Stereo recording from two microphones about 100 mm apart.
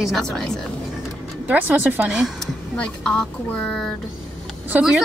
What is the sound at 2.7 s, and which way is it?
A woman's voice, 5° left (ahead or behind).